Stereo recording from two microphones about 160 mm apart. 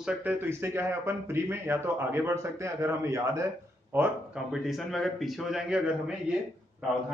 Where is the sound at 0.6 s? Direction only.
15° right (ahead or behind).